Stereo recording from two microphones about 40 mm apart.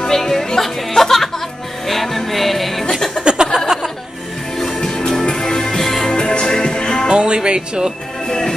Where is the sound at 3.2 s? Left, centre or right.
Centre.